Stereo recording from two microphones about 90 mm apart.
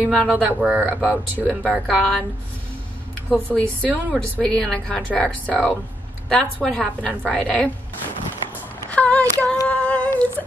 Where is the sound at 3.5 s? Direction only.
15° left (ahead or behind).